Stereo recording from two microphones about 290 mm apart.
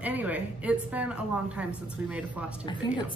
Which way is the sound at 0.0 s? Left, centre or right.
Centre.